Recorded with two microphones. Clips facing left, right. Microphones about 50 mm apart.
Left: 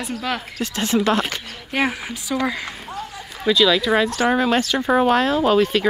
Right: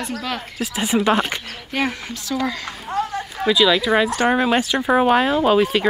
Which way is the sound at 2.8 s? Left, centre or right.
Right.